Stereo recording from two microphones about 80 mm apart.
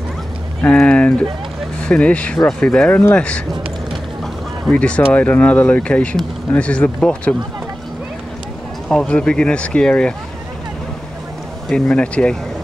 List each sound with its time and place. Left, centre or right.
0.6 s speech: centre
2.9 s speech: left
4.6 s speech: centre
8.8 s speech: centre
11.7 s speech: centre